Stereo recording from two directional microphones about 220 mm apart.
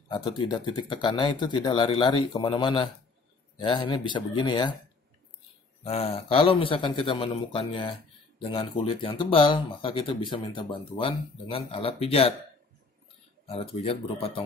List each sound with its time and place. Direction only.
0.1 s speech: 20° left (ahead or behind)
5.9 s speech: 25° left (ahead or behind)
13.5 s speech: 25° left (ahead or behind)